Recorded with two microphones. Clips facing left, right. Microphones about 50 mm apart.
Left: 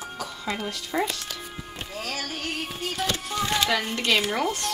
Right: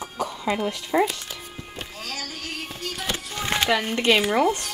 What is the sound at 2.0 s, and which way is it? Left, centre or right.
Music, left.